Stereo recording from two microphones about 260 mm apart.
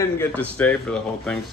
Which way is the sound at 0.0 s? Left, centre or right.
Centre.